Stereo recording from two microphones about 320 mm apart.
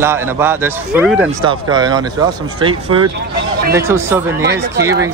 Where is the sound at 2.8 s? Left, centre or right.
Right.